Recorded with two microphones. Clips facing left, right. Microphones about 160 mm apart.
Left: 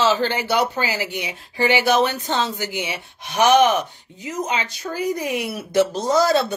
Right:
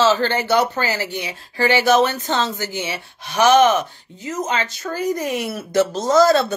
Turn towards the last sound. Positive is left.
turn(degrees=10)  # may be behind; listen again after turning